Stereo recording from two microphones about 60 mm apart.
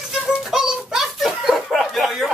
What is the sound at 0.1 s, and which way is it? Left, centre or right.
Music, centre.